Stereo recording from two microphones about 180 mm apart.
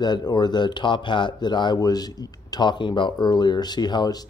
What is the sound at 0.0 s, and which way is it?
Speech, 25° left (ahead or behind).